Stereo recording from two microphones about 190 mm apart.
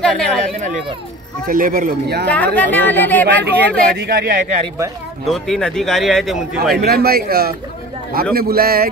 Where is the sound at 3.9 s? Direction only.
50° right (ahead or behind).